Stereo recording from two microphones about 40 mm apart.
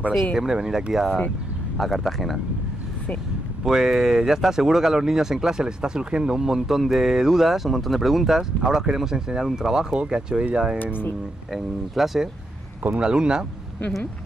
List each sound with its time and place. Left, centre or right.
0.4 s speech: centre
3.6 s speech: centre
11.5 s speech: centre
12.9 s speech: centre